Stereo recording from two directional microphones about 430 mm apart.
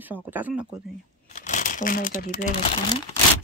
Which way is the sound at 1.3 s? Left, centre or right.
Centre.